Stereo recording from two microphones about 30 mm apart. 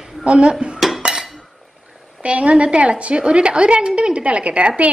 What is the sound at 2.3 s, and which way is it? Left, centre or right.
A woman's voice, right.